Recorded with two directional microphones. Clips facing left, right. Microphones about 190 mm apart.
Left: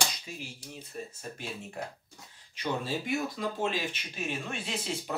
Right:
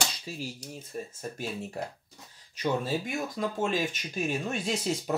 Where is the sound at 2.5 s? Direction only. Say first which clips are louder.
Right 4 dB; 45° right (ahead or behind).